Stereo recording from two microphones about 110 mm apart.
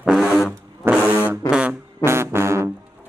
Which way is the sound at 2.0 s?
25° right (ahead or behind).